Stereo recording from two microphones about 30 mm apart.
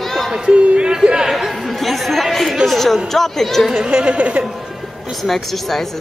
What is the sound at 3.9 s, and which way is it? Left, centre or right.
Speech, right.